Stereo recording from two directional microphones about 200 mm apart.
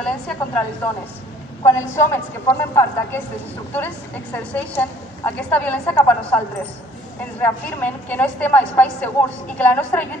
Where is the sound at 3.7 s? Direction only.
10° left (ahead or behind).